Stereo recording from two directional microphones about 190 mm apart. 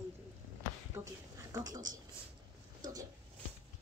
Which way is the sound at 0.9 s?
20° right (ahead or behind).